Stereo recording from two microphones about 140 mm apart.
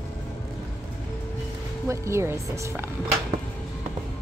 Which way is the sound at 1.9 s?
20° right (ahead or behind).